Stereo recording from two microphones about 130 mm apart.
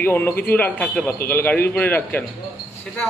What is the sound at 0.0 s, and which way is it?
A man's voice, 15° left (ahead or behind).